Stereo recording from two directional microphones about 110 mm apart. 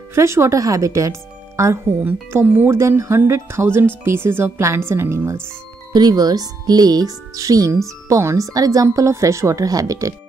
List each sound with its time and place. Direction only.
0.1 s speech: 25° right (ahead or behind)
5.9 s speech: 35° right (ahead or behind)